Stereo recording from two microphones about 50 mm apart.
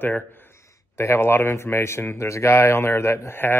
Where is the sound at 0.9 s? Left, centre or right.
Left.